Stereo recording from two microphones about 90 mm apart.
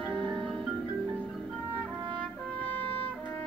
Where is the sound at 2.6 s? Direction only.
15° left (ahead or behind).